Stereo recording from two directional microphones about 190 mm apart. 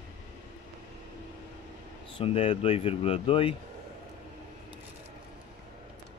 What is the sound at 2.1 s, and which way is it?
Speech, 30° left (ahead or behind).